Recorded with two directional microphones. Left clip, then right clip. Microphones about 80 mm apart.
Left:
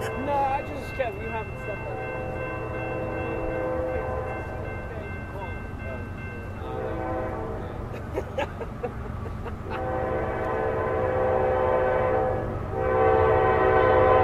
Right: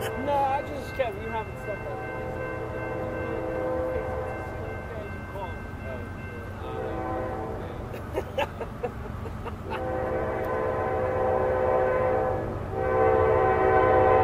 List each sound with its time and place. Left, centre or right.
0.0 s music: right
8.1 s vehicle: right
9.8 s train: left